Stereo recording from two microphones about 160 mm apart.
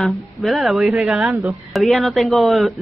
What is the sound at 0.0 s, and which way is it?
A woman's voice, centre (ahead or behind).